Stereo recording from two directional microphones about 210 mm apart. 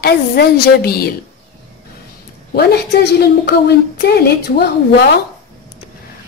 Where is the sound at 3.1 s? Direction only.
50° left (ahead or behind).